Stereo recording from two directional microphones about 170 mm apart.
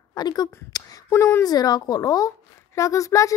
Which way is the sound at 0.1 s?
25° left (ahead or behind).